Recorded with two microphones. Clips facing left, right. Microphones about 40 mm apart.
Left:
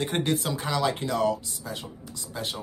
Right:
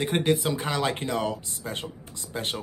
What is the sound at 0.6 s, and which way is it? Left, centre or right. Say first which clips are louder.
Speech: left 1 dB; right.